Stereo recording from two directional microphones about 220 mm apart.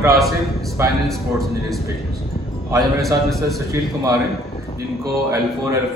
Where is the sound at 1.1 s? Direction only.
Centre (ahead or behind).